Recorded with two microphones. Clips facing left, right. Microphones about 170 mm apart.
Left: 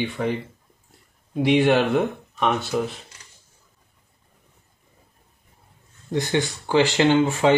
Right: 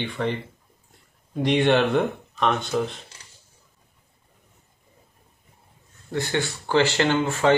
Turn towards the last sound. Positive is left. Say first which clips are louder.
# left 3 dB
turn(degrees=15)  # may be behind; listen again after turning